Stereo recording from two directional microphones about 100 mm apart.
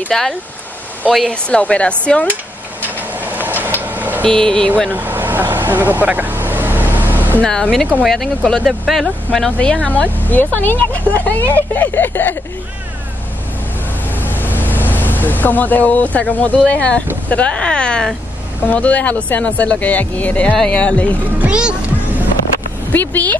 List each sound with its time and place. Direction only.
0.1 s speech: 5° left (ahead or behind)
3.0 s a sound: 20° right (ahead or behind)
3.8 s vehicle: 15° right (ahead or behind)
4.2 s speech: 10° left (ahead or behind)
4.8 s vehicle: 20° right (ahead or behind)
7.4 s speech: 5° left (ahead or behind)
10.2 s speech: 20° left (ahead or behind)
14.1 s speech: 20° left (ahead or behind)
21.4 s speech: 10° right (ahead or behind)
22.9 s speech: 20° left (ahead or behind)